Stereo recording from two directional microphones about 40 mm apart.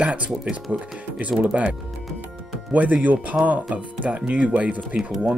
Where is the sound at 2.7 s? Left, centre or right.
Right.